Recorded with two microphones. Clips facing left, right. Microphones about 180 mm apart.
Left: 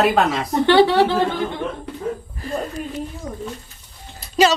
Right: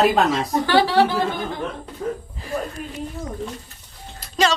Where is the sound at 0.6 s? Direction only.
20° left (ahead or behind).